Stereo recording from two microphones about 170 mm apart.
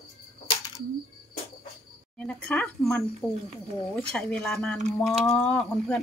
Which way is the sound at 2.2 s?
5° left (ahead or behind).